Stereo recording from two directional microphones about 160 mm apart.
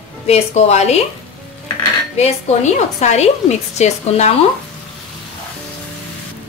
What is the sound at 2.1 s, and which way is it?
A woman's voice, 45° left (ahead or behind).